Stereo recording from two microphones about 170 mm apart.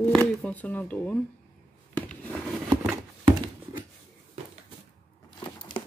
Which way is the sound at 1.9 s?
10° left (ahead or behind).